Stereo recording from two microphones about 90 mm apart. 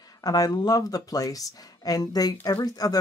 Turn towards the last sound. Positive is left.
turn(degrees=45)  # may be behind; listen again after turning